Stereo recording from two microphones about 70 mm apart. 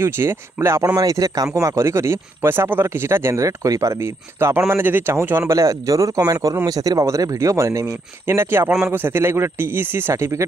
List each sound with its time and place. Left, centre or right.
0.0 s speech: right
0.8 s speech: right
5.5 s speech: right
10.1 s speech: right